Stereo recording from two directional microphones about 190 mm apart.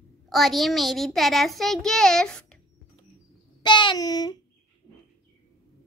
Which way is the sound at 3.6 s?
25° left (ahead or behind).